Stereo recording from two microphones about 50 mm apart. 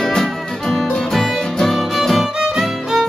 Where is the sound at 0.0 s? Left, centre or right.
Centre.